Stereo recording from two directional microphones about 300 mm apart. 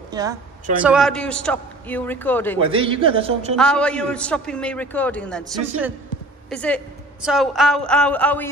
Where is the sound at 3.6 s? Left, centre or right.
Centre.